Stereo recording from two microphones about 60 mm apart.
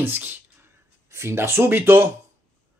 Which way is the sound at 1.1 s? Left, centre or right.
Right.